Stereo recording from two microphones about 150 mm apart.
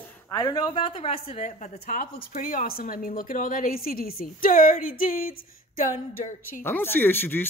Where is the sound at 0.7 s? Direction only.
40° left (ahead or behind); by 6.6 s 65° left (ahead or behind).